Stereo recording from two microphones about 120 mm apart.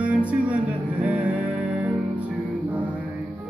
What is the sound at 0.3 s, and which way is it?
Music, 10° right (ahead or behind).